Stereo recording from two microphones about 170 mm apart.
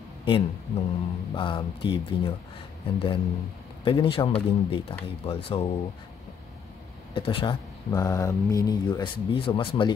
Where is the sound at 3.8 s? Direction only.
30° left (ahead or behind).